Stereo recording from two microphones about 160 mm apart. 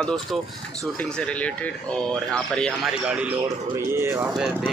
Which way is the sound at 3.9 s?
15° right (ahead or behind).